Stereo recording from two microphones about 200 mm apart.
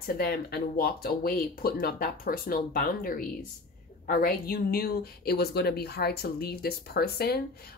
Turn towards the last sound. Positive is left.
turn(degrees=50)  # may be behind; listen again after turning